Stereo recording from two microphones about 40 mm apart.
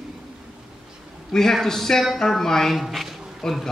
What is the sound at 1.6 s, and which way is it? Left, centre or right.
A man's voice, centre.